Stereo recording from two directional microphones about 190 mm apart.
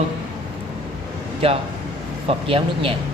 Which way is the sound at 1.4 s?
30° right (ahead or behind).